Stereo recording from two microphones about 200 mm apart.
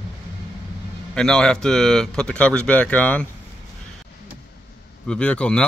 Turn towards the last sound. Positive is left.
turn(degrees=5)  # may be behind; listen again after turning